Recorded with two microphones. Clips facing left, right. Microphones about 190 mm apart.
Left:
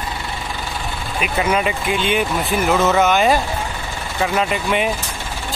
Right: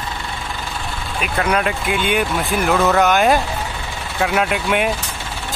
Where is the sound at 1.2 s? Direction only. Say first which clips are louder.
Even; 5° left (ahead or behind).